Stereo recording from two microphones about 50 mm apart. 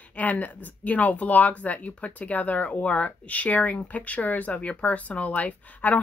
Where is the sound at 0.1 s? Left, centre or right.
Left.